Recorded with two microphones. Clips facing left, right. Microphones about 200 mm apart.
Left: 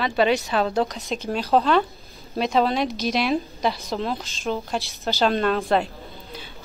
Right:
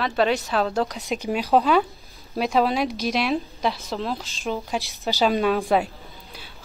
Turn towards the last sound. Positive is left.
turn(degrees=-5)  # may be behind; listen again after turning